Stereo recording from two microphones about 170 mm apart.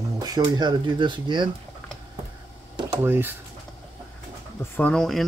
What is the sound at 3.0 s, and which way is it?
Speech, 15° right (ahead or behind).